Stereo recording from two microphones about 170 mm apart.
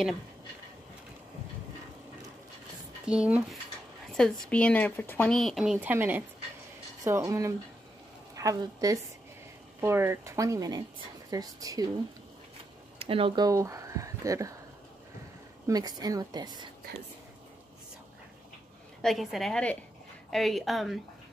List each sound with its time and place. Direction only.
3.1 s a woman's voice: 5° right (ahead or behind)
4.1 s a woman's voice: 5° left (ahead or behind); by 11.9 s 20° right (ahead or behind)
13.0 s speech: 30° right (ahead or behind)
13.5 s speech: 20° right (ahead or behind)
15.6 s a woman's voice: 20° right (ahead or behind)
18.9 s a woman's voice: centre (ahead or behind)